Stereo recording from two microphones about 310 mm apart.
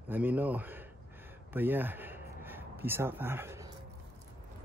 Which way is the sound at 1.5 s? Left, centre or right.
Centre.